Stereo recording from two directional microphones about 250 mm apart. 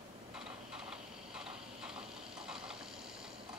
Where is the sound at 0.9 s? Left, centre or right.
Centre.